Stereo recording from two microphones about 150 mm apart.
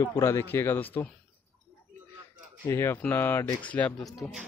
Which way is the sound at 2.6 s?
15° left (ahead or behind).